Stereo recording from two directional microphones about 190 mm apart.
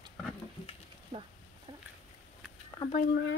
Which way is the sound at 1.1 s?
30° right (ahead or behind).